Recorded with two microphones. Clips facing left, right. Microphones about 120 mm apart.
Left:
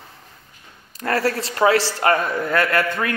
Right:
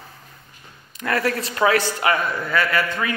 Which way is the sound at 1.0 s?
35° left (ahead or behind).